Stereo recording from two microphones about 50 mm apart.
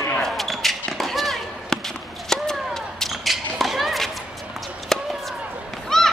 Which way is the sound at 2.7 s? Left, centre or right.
Centre.